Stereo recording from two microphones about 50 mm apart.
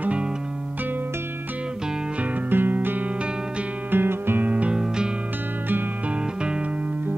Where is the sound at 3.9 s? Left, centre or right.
Right.